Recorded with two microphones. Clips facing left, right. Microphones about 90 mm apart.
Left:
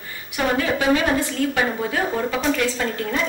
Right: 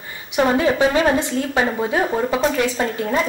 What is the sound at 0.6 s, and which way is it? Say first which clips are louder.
A woman's voice: right 3 dB; 25° right (ahead or behind).